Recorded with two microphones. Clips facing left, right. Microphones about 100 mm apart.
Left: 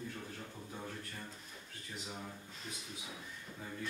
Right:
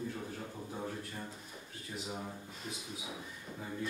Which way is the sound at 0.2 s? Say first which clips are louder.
Right 5 dB; 15° right (ahead or behind).